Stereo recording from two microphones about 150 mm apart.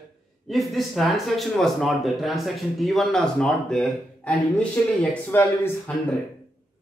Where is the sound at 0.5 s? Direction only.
Centre (ahead or behind); by 5.7 s 15° left (ahead or behind).